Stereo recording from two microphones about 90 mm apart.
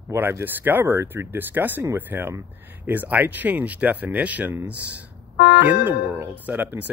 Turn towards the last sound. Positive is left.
turn(degrees=-20)  # may be behind; listen again after turning